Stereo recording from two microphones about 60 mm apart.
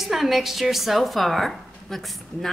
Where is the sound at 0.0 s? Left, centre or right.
Centre.